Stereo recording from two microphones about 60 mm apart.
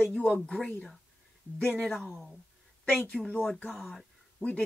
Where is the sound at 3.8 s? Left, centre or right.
Centre.